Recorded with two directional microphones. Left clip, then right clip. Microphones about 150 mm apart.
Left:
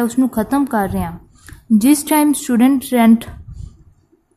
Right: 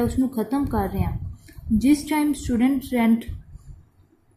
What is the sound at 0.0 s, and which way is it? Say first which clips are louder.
A woman's voice: left 6 dB; 45° left (ahead or behind).